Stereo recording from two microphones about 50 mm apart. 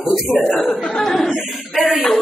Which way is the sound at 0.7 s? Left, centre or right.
Centre.